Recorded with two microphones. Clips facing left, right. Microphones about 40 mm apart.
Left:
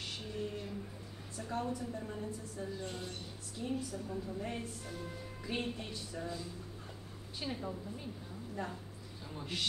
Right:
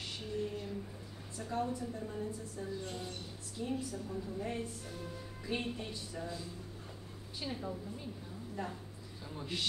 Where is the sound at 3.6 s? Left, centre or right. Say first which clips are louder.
Even; centre.